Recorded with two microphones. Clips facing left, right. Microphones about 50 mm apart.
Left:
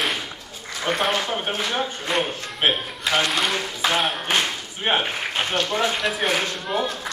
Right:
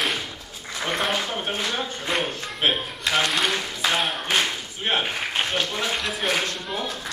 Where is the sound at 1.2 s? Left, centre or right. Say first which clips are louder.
Left 2 dB; left.